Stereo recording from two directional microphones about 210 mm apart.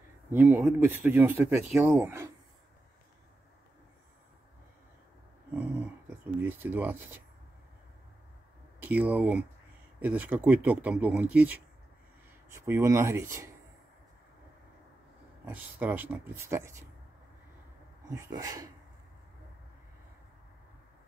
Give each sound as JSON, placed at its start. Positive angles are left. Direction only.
{"t": 0.3, "sound": "speech", "side_deg": -10}
{"t": 5.5, "sound": "a sound", "side_deg": -10}
{"t": 8.7, "sound": "speech", "side_deg": -10}
{"t": 15.4, "sound": "speech", "side_deg": -10}
{"t": 18.0, "sound": "speech", "side_deg": -15}